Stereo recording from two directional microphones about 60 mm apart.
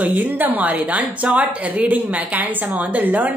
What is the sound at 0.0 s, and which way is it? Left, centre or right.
A woman's voice, right.